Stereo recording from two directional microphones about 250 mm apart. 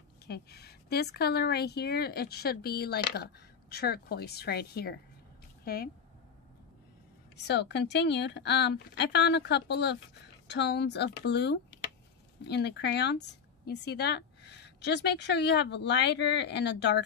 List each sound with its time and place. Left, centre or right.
0.3 s a woman's voice: left
7.4 s a woman's voice: left